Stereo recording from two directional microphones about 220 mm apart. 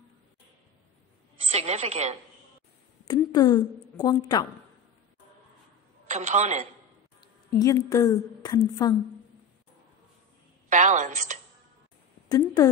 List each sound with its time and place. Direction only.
1.5 s a woman's voice: 30° right (ahead or behind)
3.1 s a woman's voice: 15° left (ahead or behind)
6.0 s speech: 30° right (ahead or behind)
7.2 s a woman's voice: 15° left (ahead or behind)
10.7 s speech: 35° right (ahead or behind)
12.3 s a woman's voice: 15° left (ahead or behind)